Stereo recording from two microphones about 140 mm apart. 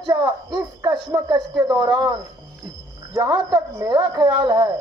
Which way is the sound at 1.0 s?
30° right (ahead or behind).